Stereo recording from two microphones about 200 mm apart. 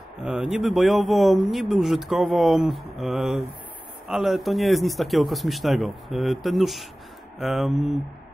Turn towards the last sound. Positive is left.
turn(degrees=0)  # may be behind; listen again after turning